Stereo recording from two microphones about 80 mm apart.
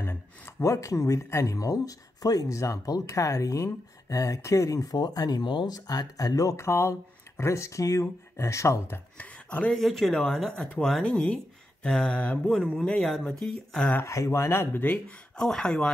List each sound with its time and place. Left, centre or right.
0.0 s speech: left
6.5 s speech: left
9.2 s speech: centre
9.8 s speech: centre
14.0 s speech: left
15.3 s speech: centre